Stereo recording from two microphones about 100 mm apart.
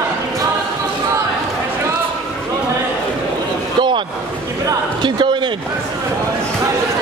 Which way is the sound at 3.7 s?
50° right (ahead or behind).